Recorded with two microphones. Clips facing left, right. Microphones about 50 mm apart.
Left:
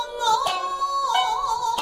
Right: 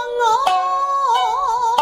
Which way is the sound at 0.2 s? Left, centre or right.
Right.